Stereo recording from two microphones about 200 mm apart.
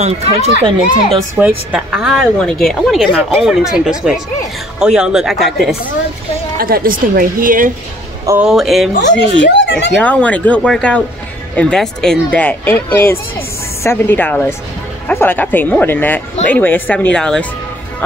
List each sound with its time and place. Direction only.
0.0 s speech: 35° right (ahead or behind)
1.7 s speech: 5° right (ahead or behind)
6.6 s a woman's voice: 45° right (ahead or behind)
8.3 s speech: 5° right (ahead or behind)
9.4 s speech: 65° left (ahead or behind)
9.9 s speech: 5° left (ahead or behind)